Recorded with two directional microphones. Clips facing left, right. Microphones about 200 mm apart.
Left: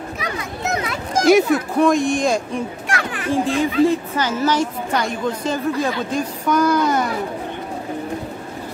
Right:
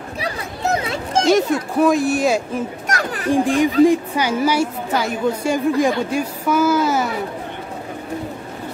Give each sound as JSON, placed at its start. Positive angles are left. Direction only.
{"t": 0.2, "sound": "a sound", "side_deg": -30}
{"t": 1.8, "sound": "speech", "side_deg": -5}
{"t": 2.9, "sound": "children playing", "side_deg": -40}
{"t": 3.3, "sound": "a woman's voice", "side_deg": -15}